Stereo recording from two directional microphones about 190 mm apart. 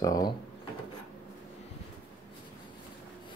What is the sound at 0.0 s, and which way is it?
Speech, 20° left (ahead or behind).